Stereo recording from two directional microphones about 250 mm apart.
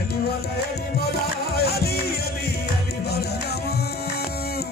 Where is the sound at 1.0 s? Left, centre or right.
Left.